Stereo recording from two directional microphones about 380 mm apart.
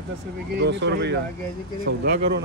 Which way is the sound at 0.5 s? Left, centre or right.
Right.